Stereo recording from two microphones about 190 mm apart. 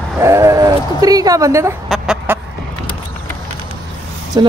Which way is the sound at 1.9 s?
5° right (ahead or behind).